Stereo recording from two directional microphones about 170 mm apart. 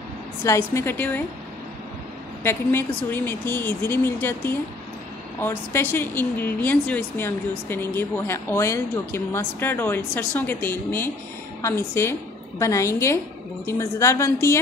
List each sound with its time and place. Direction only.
0.4 s a woman's voice: 15° left (ahead or behind)
2.4 s a woman's voice: 15° left (ahead or behind)